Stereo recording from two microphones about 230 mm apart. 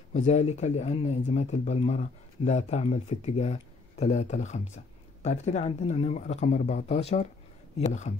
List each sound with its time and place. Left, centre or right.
0.1 s speech: left